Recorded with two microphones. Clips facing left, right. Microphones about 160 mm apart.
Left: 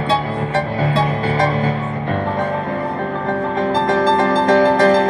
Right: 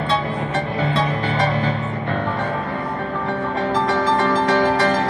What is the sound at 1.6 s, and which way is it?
Music, 35° left (ahead or behind).